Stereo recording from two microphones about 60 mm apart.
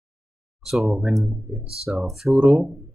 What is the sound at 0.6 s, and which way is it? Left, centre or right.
Speech, centre.